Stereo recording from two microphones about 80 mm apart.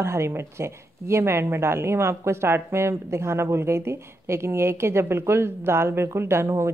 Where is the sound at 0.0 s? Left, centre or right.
Right.